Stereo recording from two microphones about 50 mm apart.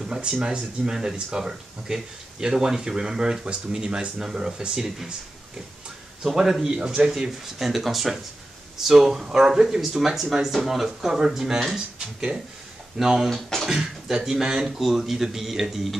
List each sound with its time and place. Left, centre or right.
0.0 s speech: centre
6.2 s a man's voice: centre
7.1 s speech: centre
13.5 s beatboxing: centre
13.7 s speech: centre